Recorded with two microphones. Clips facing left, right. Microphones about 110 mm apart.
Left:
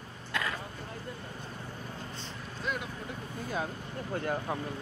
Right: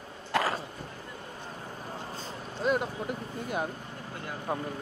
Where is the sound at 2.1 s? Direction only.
45° right (ahead or behind).